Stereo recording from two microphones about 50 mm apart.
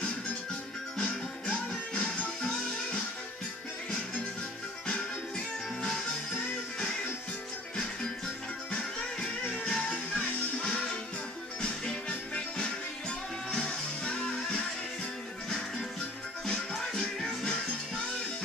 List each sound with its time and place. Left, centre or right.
0.9 s music: centre
9.2 s music: centre
9.8 s music: left
16.9 s music: centre